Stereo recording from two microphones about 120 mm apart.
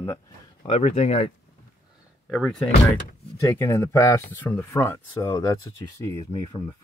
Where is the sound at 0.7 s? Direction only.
65° left (ahead or behind).